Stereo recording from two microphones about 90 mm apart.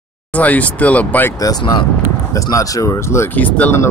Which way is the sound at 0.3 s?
15° left (ahead or behind).